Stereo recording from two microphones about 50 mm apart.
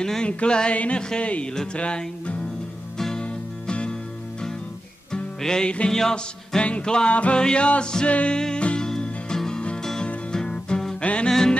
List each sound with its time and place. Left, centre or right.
0.0 s music: centre
0.7 s a sound: left
1.5 s music: centre
1.8 s a sound: left
3.0 s music: centre
5.1 s music: centre
7.2 s a sound: left
8.4 s music: centre
11.0 s music: left
11.2 s music: centre